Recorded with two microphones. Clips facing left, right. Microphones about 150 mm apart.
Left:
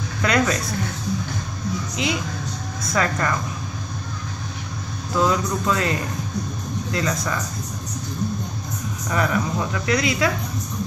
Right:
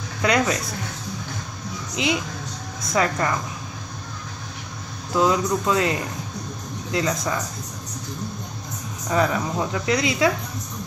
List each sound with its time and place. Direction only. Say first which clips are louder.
0.2 s speech: even; 15° right (ahead or behind)
2.0 s speech: right 3 dB; 20° right (ahead or behind)
5.1 s speech: right 1 dB; 20° right (ahead or behind)
9.1 s speech: right 1 dB; 25° right (ahead or behind)